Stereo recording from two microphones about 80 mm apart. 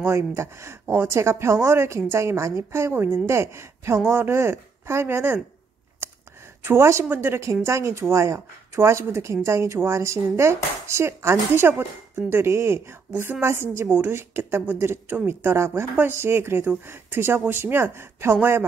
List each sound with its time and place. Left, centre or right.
0.0 s speech: right
6.0 s a sound: right
6.6 s speech: right